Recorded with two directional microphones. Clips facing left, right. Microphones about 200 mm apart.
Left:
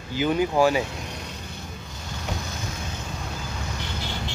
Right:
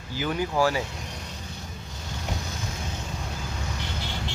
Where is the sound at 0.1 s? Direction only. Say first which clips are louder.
Left 5 dB; 20° left (ahead or behind).